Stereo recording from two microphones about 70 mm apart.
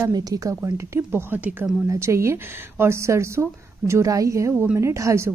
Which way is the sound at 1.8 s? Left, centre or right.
Right.